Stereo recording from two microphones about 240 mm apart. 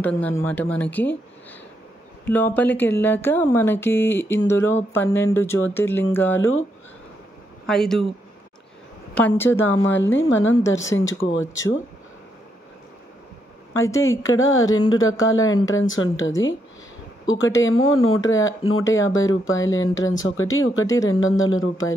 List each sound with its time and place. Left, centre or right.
0.0 s speech: centre
2.2 s speech: centre
7.6 s speech: centre
9.3 s speech: centre
9.8 s speech: left
14.0 s speech: left
17.3 s speech: left
19.9 s speech: centre
20.2 s speech: left